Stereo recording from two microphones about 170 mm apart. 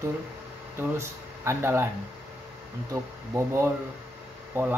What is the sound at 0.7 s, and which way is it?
Speech, 15° right (ahead or behind).